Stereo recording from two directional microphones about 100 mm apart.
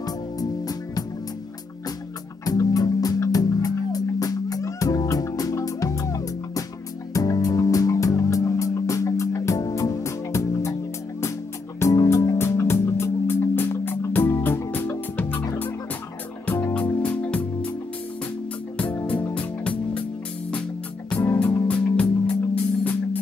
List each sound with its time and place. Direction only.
0.0 s music: 40° left (ahead or behind)
2.4 s music: 35° left (ahead or behind); by 15.4 s 20° left (ahead or behind)
16.4 s music: 20° left (ahead or behind)
18.8 s music: 15° left (ahead or behind)
21.2 s music: 20° left (ahead or behind)